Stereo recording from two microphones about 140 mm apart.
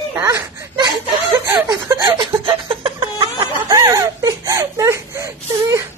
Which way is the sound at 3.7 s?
20° right (ahead or behind).